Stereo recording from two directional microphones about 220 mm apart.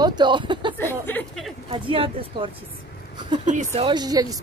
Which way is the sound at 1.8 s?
25° right (ahead or behind).